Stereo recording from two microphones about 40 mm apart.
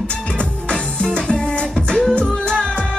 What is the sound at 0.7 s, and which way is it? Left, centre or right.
Music, left.